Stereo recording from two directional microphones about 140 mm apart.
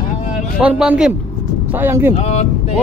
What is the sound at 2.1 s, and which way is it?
Speech, 50° left (ahead or behind).